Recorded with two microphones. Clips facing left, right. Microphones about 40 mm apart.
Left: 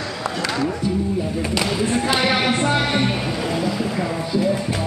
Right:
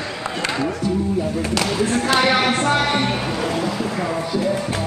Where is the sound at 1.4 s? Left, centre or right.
Centre.